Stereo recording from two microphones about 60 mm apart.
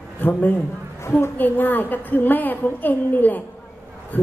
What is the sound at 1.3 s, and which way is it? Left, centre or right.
A woman's voice, left.